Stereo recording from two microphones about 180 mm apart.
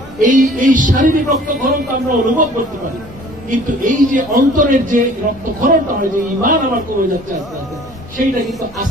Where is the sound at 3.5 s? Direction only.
45° right (ahead or behind).